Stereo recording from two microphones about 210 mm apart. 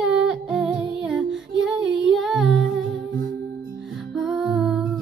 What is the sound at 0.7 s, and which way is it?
Music, 25° right (ahead or behind).